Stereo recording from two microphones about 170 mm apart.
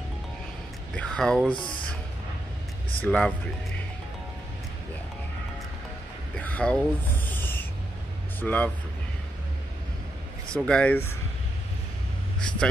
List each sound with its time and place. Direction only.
0.9 s speech: 5° left (ahead or behind)
1.5 s speech: 30° left (ahead or behind)
3.0 s speech: 5° left (ahead or behind)
6.3 s a sound: 10° left (ahead or behind)
7.3 s owl: 10° left (ahead or behind)
8.4 s speech: 10° left (ahead or behind)
10.5 s speech: 5° left (ahead or behind)